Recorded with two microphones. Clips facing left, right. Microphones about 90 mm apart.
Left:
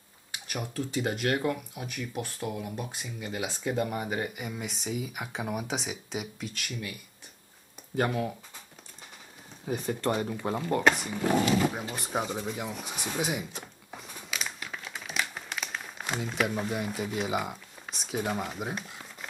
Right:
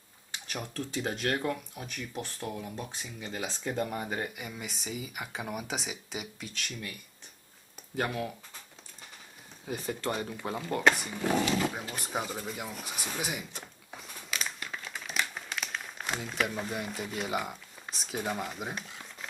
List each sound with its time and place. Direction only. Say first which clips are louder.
0.3 s speech: left 2 dB; 10° left (ahead or behind)
9.7 s speech: left 4 dB; 5° left (ahead or behind)